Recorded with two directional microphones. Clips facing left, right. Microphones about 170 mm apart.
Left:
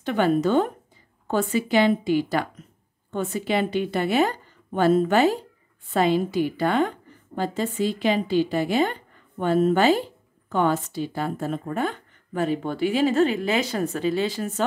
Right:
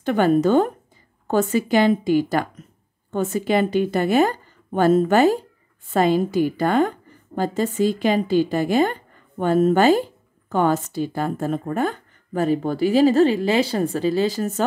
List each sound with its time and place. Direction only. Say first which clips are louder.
0.0 s a woman's voice: right 4 dB; 45° right (ahead or behind)